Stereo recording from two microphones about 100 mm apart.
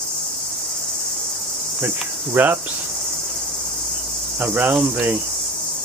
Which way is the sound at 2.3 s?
20° right (ahead or behind).